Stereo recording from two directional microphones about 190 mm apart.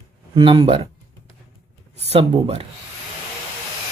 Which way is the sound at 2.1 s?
30° right (ahead or behind).